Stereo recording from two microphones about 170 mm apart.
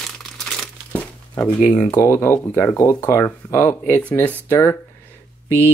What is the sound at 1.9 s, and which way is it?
Speech, 15° left (ahead or behind).